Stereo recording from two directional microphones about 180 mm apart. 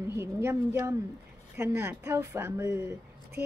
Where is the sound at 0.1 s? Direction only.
15° right (ahead or behind).